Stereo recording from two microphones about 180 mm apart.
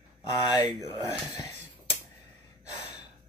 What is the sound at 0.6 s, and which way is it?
Speech, 35° right (ahead or behind).